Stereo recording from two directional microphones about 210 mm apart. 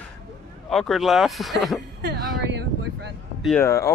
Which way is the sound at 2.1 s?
55° right (ahead or behind).